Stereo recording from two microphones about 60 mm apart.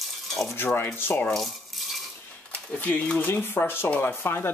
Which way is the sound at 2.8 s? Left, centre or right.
Left.